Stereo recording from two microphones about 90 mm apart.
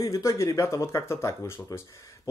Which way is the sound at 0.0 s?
35° left (ahead or behind).